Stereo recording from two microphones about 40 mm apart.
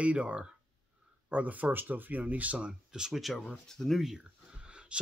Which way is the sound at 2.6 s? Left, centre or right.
Centre.